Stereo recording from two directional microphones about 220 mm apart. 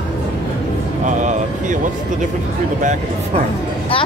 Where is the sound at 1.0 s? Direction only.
35° right (ahead or behind).